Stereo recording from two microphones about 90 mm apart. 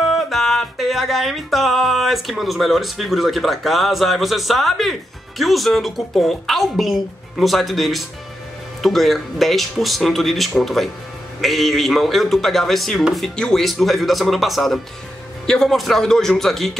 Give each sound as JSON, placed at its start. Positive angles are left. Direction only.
{"t": 0.0, "sound": "music", "side_deg": 0}
{"t": 5.4, "sound": "speech", "side_deg": 0}